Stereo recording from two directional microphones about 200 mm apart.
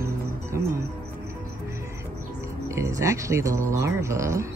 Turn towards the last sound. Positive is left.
turn(degrees=-15)  # may be behind; listen again after turning